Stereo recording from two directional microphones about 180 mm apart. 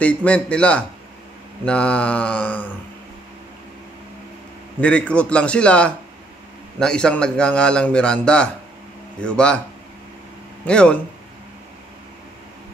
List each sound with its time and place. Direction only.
0.0 s a man's voice: 5° left (ahead or behind)
4.7 s a man's voice: 5° left (ahead or behind)
10.7 s a man's voice: 5° left (ahead or behind)